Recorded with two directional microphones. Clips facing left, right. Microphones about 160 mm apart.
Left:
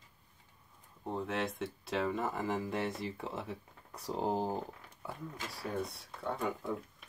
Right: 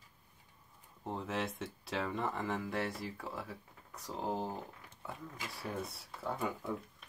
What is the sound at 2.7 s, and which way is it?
Speech, 20° left (ahead or behind).